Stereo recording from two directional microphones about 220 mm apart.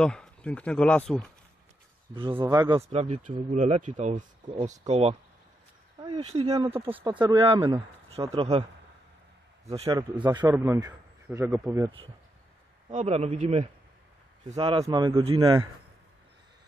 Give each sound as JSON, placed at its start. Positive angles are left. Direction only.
{"t": 0.0, "sound": "speech", "side_deg": 5}
{"t": 2.1, "sound": "a man's voice", "side_deg": -20}
{"t": 2.8, "sound": "speech", "side_deg": -30}
{"t": 9.7, "sound": "speech", "side_deg": -25}
{"t": 10.4, "sound": "a man's voice", "side_deg": -10}
{"t": 12.9, "sound": "speech", "side_deg": -30}